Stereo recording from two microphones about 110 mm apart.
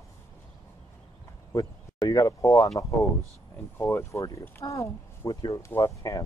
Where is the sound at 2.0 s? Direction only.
30° left (ahead or behind).